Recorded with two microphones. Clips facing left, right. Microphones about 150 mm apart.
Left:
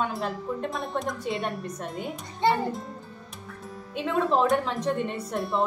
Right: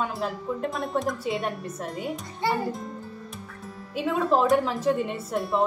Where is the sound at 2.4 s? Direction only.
25° left (ahead or behind).